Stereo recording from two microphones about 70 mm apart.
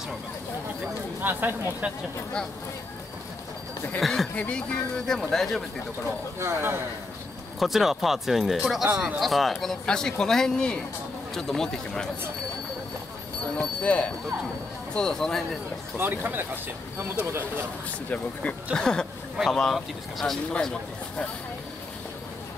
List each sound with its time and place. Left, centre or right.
1.2 s speech: right
4.0 s speech: centre
4.4 s speech: centre
6.4 s a man's voice: right
7.5 s speech: centre
13.6 s speech: centre
15.0 s speech: centre
16.0 s a man's voice: right
18.1 s speech: centre